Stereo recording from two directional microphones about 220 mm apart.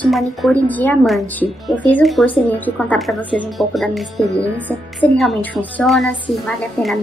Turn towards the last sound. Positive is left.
turn(degrees=0)  # may be behind; listen again after turning